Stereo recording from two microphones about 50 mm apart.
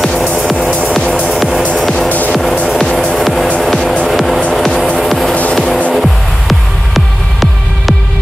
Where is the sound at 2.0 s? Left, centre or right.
Left.